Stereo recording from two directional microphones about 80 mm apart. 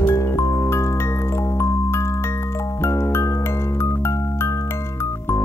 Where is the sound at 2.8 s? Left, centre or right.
Left.